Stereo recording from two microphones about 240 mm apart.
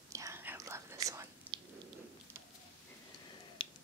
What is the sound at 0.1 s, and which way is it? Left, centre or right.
Whispering, centre.